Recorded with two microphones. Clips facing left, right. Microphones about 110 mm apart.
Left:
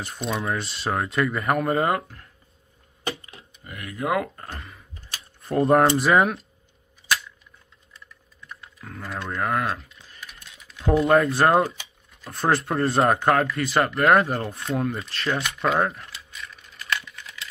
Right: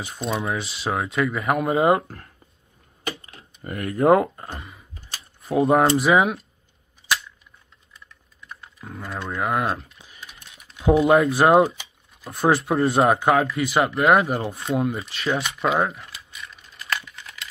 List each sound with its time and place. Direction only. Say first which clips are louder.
0.0 s speech: right 1 dB; 5° right (ahead or behind)
2.0 s speech: right 6 dB; 45° right (ahead or behind)
3.6 s speech: right 10 dB; 45° right (ahead or behind)
4.5 s a sound: right 2 dB; 5° right (ahead or behind)
5.9 s speech: right 1 dB; 5° right (ahead or behind)
8.8 s speech: right 1 dB; 20° right (ahead or behind)
9.7 s speech: right 3 dB; 35° right (ahead or behind)
9.9 s typing: even; 20° right (ahead or behind)
10.9 s speech: right 2 dB; 5° right (ahead or behind)
16.4 s a sound: even; 25° right (ahead or behind)